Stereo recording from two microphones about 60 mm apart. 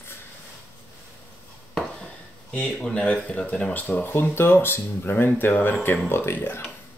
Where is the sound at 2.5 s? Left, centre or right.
Centre.